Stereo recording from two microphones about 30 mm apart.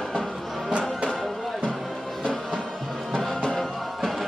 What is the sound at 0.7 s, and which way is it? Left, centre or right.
Music, right.